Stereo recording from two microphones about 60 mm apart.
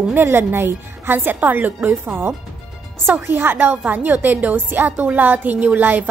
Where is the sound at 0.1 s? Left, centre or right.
Right.